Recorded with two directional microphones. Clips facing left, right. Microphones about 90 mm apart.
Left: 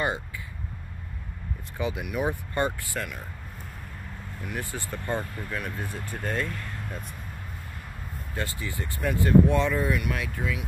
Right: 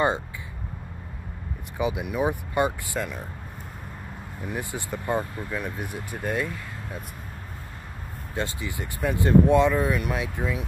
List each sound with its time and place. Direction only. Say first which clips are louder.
1.8 s speech: right 3 dB; 20° right (ahead or behind)
4.4 s speech: right 2 dB; 20° right (ahead or behind)
8.4 s speech: right 3 dB; 20° right (ahead or behind)